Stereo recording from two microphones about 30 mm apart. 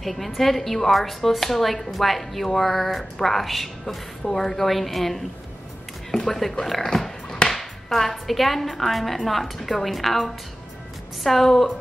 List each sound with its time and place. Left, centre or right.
0.0 s a woman's voice: centre
6.6 s music: centre
7.4 s a woman's voice: centre